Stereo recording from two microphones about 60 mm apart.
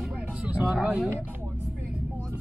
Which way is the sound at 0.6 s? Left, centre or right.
Centre.